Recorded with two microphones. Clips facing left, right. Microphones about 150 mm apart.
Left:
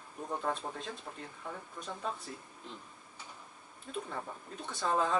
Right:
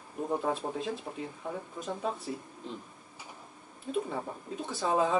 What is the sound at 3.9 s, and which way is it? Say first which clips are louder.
Speech: right 6 dB; 5° right (ahead or behind).